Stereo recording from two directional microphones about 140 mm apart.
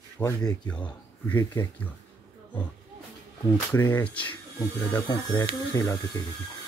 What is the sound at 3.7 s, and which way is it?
Speech, 20° left (ahead or behind).